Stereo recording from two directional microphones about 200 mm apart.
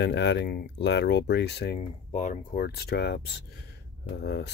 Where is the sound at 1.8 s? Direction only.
40° left (ahead or behind).